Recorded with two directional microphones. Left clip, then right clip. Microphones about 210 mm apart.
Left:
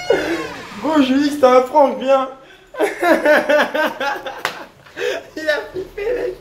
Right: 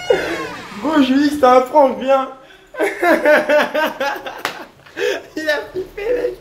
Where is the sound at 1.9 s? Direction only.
5° left (ahead or behind); by 4.4 s 10° right (ahead or behind).